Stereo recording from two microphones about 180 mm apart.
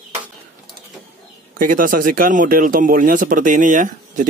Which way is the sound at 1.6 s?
50° right (ahead or behind).